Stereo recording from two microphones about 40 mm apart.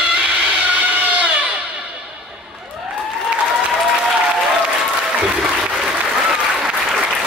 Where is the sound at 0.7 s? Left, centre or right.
Right.